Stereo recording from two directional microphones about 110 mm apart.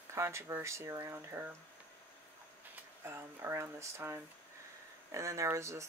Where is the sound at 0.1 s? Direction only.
25° right (ahead or behind).